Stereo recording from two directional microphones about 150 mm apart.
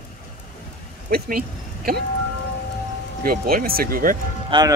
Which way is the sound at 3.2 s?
80° right.